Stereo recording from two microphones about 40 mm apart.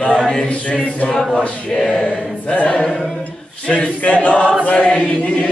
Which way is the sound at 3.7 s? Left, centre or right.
Left.